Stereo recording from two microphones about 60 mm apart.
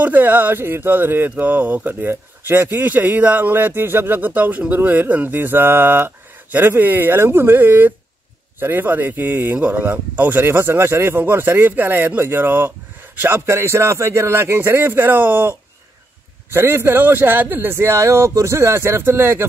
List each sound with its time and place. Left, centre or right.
0.0 s speech: right
1.3 s speech: right
13.5 s speech: right
16.5 s speech: right